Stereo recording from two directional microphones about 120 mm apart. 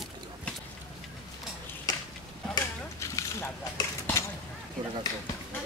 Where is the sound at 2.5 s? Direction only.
25° left (ahead or behind).